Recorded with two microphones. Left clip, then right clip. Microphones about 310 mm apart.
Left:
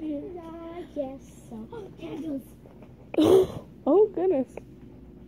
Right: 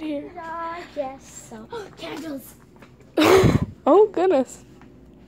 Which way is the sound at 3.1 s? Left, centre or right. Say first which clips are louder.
Right 4 dB; right.